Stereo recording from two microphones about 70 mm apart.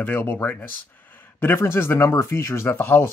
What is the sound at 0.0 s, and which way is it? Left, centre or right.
A man's voice, left.